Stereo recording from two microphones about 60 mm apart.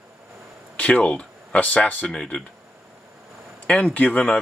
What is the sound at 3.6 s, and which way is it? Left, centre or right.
Speech, centre.